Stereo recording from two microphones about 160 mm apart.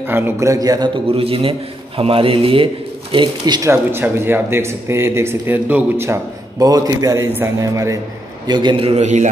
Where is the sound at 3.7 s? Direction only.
15° right (ahead or behind).